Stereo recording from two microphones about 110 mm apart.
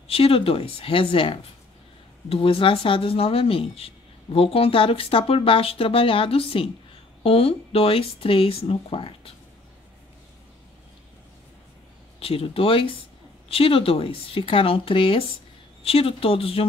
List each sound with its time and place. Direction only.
0.1 s speech: 60° left (ahead or behind)
12.2 s speech: 60° left (ahead or behind)